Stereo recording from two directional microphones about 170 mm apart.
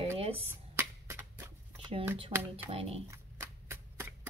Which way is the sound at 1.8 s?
30° right (ahead or behind).